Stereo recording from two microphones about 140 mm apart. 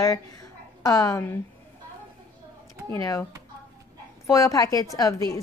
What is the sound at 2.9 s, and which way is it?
Speech, 25° left (ahead or behind).